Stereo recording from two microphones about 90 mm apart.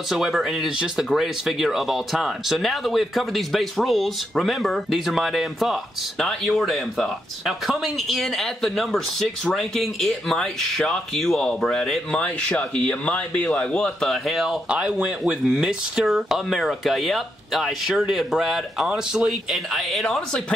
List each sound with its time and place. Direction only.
0.1 s speech: 5° right (ahead or behind)